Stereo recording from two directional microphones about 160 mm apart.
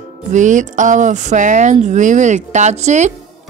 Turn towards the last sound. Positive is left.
turn(degrees=-45)  # may be behind; listen again after turning